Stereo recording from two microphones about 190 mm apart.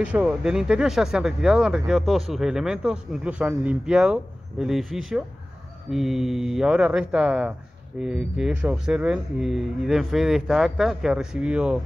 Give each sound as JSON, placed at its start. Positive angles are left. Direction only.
{"t": 0.0, "sound": "speech", "side_deg": -5}